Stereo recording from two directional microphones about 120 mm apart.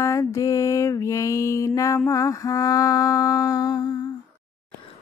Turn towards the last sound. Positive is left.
turn(degrees=35)  # may be behind; listen again after turning